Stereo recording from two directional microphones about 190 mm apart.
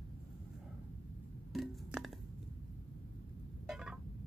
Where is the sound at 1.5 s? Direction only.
Centre (ahead or behind).